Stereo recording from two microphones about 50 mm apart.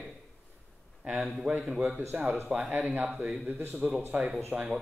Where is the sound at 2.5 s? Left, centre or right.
Right.